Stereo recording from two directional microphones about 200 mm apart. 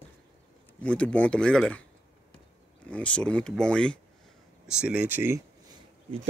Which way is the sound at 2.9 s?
5° left (ahead or behind).